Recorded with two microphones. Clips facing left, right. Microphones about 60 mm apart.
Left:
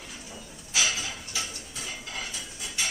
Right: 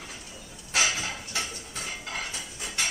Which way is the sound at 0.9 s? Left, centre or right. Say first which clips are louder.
Right 2 dB; right.